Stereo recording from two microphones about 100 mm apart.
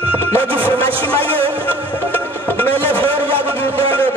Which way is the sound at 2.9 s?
20° left (ahead or behind).